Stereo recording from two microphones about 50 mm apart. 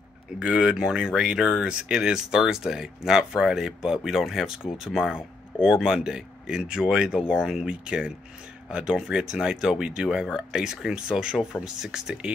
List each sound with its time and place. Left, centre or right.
0.4 s speech: centre